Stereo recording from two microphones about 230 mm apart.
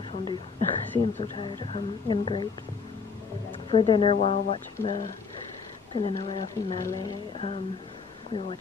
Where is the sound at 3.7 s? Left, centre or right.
Left.